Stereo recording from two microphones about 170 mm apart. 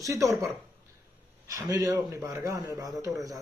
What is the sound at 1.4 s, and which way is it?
A man's voice, 20° right (ahead or behind).